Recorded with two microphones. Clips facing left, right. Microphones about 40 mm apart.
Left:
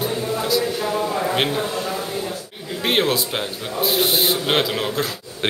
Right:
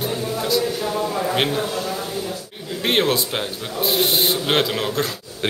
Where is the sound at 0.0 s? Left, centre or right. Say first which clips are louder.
Left 1 dB; centre.